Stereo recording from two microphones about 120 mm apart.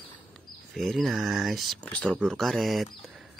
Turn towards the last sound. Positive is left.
turn(degrees=0)  # may be behind; listen again after turning